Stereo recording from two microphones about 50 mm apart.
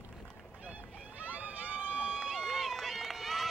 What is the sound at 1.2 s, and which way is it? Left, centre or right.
Vehicle, right.